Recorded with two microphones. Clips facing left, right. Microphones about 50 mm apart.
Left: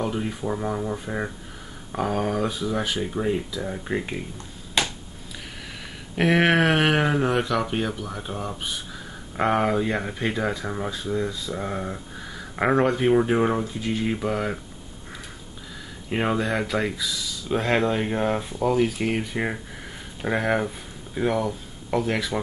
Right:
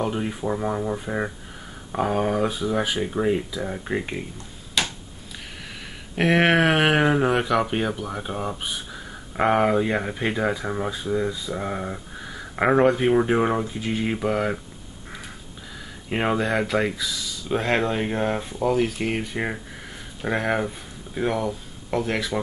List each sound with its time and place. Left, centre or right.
0.0 s speech: centre
4.8 s finger snapping: left
6.1 s speech: centre
16.1 s speech: centre